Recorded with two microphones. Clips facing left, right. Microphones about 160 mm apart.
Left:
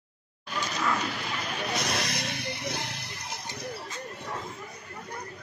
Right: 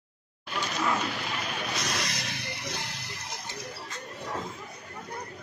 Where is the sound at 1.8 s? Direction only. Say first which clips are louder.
Left 2 dB; 65° left (ahead or behind).